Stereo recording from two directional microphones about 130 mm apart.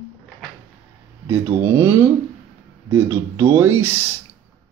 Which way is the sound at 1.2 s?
20° right (ahead or behind).